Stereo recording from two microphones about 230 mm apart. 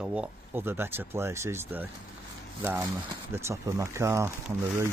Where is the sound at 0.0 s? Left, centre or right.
Centre.